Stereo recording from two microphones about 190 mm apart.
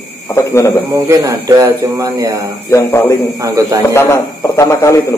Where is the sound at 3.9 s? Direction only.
15° left (ahead or behind).